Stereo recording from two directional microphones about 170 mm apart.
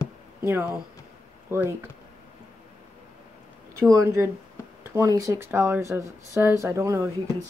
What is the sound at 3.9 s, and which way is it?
Speech, 15° right (ahead or behind).